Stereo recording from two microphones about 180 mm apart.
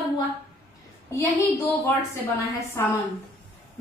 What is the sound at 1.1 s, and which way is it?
Speech, 15° left (ahead or behind).